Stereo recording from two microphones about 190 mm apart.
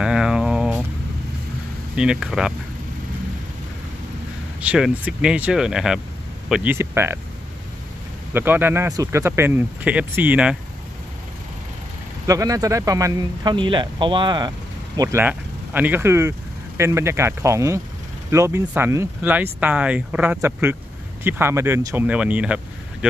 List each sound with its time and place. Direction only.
0.0 s a sound: 5° right (ahead or behind)
2.0 s speech: 5° right (ahead or behind)
4.6 s speech: 5° right (ahead or behind)
8.3 s speech: 10° right (ahead or behind)
12.3 s speech: 20° right (ahead or behind)